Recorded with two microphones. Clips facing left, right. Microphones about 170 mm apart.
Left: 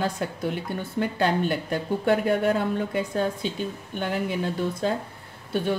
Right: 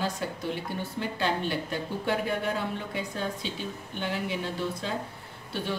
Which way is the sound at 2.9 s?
50° left (ahead or behind).